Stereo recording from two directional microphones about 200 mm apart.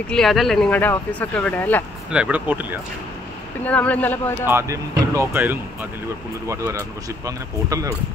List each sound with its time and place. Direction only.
0.1 s speech: centre (ahead or behind)
2.0 s speech: 5° right (ahead or behind)
3.6 s speech: 5° left (ahead or behind)
4.5 s speech: 15° right (ahead or behind)